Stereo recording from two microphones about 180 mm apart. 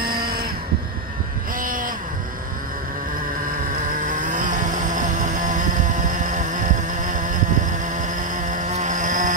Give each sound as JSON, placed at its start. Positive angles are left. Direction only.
{"t": 0.2, "sound": "a sound", "side_deg": -55}
{"t": 1.6, "sound": "vehicle", "side_deg": -50}
{"t": 4.1, "sound": "vehicle", "side_deg": -45}